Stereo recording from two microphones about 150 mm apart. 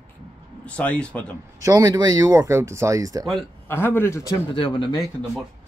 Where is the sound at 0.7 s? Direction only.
10° left (ahead or behind).